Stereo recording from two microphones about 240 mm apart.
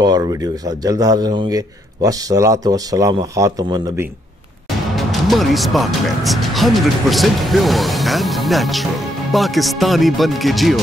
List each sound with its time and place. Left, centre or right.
0.0 s a man's voice: centre
4.9 s speech: centre